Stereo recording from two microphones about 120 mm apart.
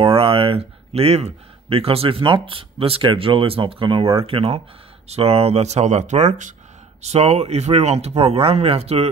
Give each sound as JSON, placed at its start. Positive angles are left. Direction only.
{"t": 0.0, "sound": "speech", "side_deg": -50}
{"t": 7.0, "sound": "speech", "side_deg": -60}